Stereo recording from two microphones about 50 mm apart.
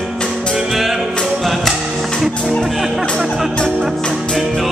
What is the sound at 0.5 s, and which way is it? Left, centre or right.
Music, centre.